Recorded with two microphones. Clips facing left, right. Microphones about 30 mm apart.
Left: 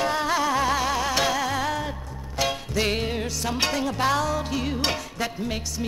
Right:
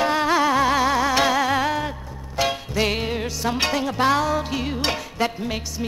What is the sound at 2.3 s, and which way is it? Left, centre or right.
Music, centre.